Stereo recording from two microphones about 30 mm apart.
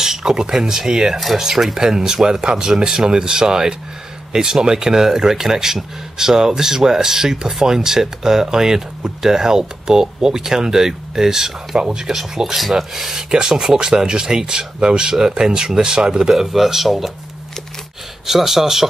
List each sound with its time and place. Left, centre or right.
0.0 s speech: centre
16.5 s speech: centre
18.2 s speech: centre